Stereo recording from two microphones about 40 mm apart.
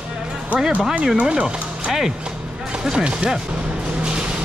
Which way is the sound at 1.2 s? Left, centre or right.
Right.